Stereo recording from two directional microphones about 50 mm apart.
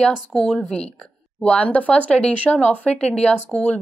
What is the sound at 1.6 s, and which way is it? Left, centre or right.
Speech, left.